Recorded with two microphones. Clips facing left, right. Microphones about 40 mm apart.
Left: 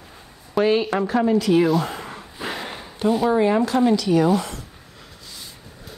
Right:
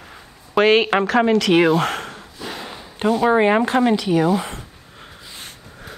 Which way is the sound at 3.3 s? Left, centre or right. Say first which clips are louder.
Right 4 dB; right.